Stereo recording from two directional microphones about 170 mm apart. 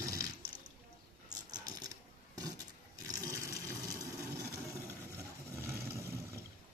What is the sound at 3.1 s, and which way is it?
Water, 20° right (ahead or behind).